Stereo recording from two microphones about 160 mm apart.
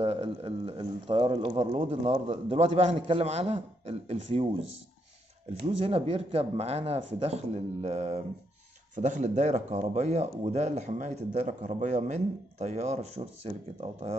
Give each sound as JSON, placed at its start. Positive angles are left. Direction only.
{"t": 0.0, "sound": "speech", "side_deg": -40}
{"t": 5.7, "sound": "speech", "side_deg": -40}